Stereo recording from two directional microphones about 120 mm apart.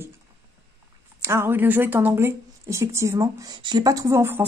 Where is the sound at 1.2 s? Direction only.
20° right (ahead or behind).